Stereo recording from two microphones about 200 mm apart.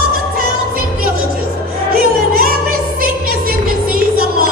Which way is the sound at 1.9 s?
50° right (ahead or behind).